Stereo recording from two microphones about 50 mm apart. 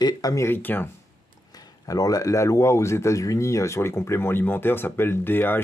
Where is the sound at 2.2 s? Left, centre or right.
Left.